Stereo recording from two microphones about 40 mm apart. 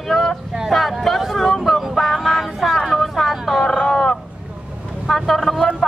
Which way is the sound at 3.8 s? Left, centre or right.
Centre.